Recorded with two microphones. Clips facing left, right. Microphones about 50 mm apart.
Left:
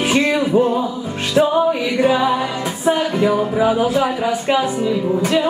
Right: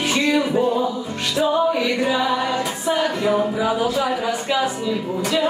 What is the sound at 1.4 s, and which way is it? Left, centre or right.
Music, left.